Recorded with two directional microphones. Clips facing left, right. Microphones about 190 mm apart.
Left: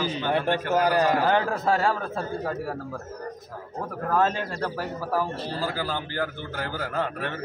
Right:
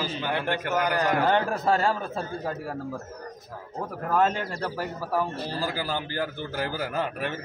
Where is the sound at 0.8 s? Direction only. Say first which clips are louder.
Left 5 dB; 25° left (ahead or behind).